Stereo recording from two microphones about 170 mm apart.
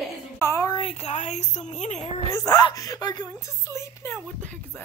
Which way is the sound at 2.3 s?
25° left (ahead or behind).